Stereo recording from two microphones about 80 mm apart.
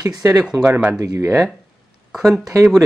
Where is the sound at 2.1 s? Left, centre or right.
Centre.